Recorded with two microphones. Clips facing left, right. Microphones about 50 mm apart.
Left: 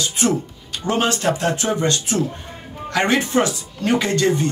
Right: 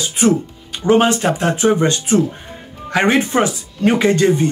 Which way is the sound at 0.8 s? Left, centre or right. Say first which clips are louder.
Right 6 dB; right.